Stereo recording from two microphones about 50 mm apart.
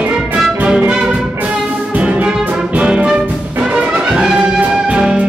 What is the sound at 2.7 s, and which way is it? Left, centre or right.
Brass instrument, right.